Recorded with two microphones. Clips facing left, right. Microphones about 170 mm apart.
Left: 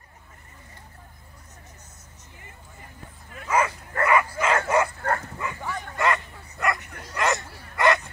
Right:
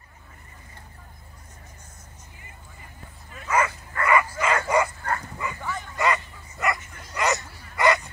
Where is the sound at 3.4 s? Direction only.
10° left (ahead or behind).